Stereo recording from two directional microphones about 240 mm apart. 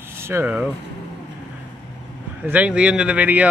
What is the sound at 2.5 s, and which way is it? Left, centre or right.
Speech, centre.